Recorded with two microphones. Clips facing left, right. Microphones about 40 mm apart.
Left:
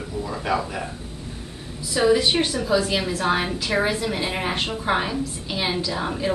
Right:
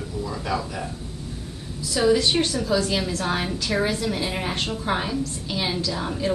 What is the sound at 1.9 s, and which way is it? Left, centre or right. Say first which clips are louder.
A woman's voice: left 1 dB; centre.